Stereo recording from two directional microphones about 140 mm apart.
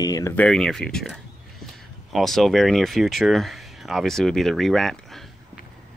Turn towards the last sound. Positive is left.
turn(degrees=0)  # may be behind; listen again after turning